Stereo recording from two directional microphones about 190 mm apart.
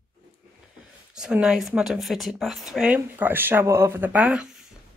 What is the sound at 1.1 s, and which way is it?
Speech, 5° right (ahead or behind).